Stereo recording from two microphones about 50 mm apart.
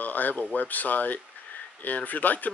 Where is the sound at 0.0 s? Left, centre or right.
Left.